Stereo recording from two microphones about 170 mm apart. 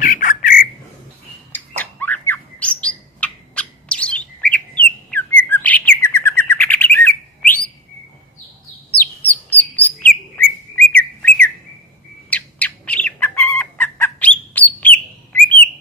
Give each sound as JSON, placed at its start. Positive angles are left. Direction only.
{"t": 0.0, "sound": "squawk", "side_deg": 50}
{"t": 1.8, "sound": "bird", "side_deg": 10}
{"t": 9.3, "sound": "bird", "side_deg": 10}
{"t": 10.8, "sound": "whistle", "side_deg": 10}
{"t": 12.3, "sound": "bird", "side_deg": 10}